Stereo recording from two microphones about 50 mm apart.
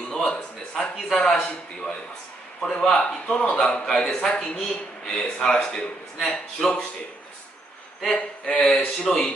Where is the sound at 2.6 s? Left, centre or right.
Centre.